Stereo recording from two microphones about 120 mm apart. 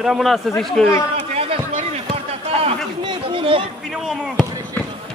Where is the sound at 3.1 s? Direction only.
50° right (ahead or behind).